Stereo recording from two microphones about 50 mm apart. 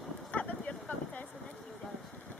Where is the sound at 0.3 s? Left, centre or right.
Left.